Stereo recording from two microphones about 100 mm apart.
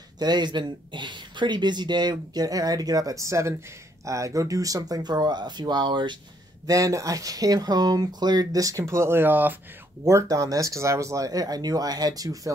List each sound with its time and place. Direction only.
0.2 s speech: 45° right (ahead or behind)
6.7 s speech: 35° right (ahead or behind); by 9.6 s 20° right (ahead or behind)
10.0 s speech: 30° right (ahead or behind)